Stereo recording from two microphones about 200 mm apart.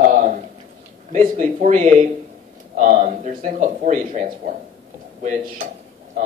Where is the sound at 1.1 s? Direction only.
35° right (ahead or behind).